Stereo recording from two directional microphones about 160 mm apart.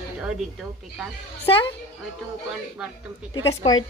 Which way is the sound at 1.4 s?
35° left (ahead or behind).